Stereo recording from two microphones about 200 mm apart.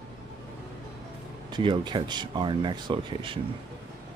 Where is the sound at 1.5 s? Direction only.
20° right (ahead or behind).